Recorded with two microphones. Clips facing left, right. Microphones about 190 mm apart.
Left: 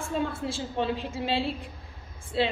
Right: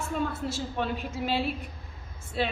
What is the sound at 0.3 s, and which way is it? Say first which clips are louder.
Speech: even; 30° left (ahead or behind).